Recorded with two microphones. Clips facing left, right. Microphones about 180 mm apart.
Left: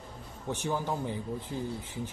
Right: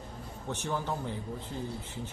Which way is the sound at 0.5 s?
10° left (ahead or behind).